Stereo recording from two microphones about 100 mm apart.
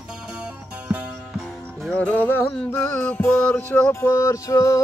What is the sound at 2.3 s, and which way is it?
Music, 25° left (ahead or behind).